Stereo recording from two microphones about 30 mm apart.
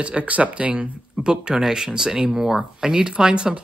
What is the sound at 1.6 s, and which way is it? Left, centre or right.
Speech, centre.